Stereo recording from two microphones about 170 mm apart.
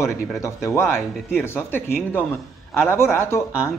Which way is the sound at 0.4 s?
15° left (ahead or behind).